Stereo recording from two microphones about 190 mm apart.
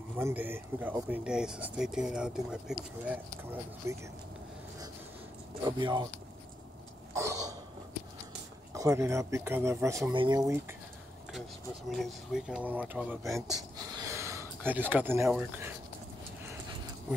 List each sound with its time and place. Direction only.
0.2 s speech: 10° right (ahead or behind)
5.6 s speech: 25° right (ahead or behind)
7.2 s a sound: 15° right (ahead or behind)
8.7 s speech: 15° right (ahead or behind)
10.1 s speech: 25° right (ahead or behind)
10.4 s speech: 10° right (ahead or behind)
11.9 s speech: centre (ahead or behind)
13.9 s a sound: 15° right (ahead or behind)